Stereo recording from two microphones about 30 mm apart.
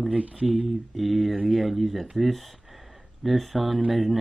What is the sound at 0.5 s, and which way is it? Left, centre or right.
Speech, centre.